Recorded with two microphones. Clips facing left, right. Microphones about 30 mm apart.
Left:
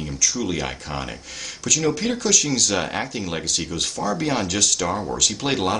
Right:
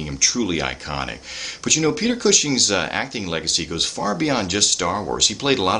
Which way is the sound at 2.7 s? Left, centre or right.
Right.